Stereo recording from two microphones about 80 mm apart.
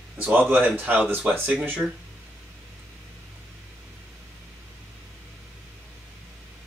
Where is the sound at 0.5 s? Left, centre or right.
Right.